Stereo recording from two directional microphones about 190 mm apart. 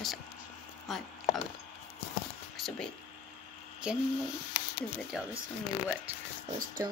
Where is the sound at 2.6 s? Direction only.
5° left (ahead or behind).